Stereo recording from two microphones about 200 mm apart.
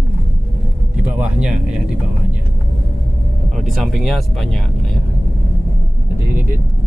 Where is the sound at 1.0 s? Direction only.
5° right (ahead or behind).